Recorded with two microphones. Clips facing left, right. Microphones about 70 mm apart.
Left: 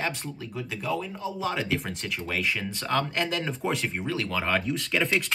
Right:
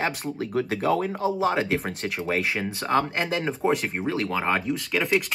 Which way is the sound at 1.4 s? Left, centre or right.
Right.